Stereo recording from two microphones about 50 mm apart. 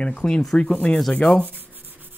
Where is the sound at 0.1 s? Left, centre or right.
Centre.